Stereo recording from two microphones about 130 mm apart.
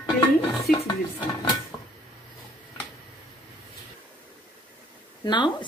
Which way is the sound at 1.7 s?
10° left (ahead or behind).